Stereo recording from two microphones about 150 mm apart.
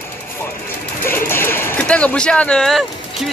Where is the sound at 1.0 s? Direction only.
15° left (ahead or behind).